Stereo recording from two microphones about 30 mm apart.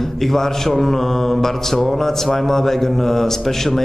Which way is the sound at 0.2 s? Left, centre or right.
Centre.